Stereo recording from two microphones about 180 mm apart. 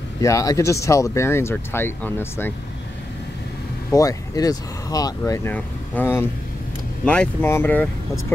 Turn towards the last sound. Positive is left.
turn(degrees=10)  # may be behind; listen again after turning